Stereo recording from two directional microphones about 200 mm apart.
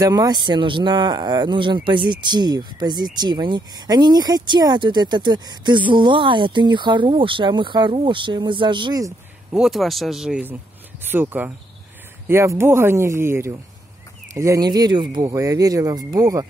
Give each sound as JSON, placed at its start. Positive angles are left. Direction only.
{"t": 0.0, "sound": "speech", "side_deg": -20}
{"t": 9.5, "sound": "speech", "side_deg": 0}